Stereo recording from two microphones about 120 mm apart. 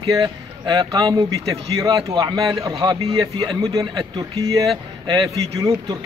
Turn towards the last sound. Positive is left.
turn(degrees=-35)  # may be behind; listen again after turning